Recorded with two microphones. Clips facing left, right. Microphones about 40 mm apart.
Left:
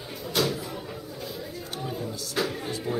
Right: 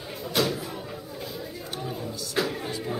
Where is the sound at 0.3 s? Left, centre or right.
Centre.